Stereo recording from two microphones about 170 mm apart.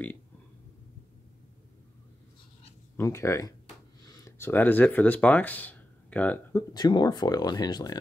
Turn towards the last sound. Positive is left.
turn(degrees=25)  # may be behind; listen again after turning